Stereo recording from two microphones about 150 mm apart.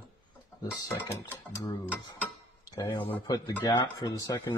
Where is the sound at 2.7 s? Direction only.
35° left (ahead or behind).